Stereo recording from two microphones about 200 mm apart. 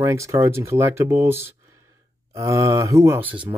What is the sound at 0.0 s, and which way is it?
Speech, 15° right (ahead or behind).